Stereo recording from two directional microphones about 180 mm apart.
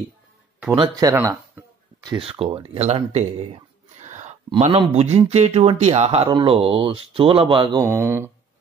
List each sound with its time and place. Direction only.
0.7 s speech: 25° right (ahead or behind)